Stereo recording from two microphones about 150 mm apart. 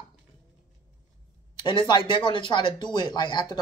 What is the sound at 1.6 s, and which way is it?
Speech, 30° left (ahead or behind).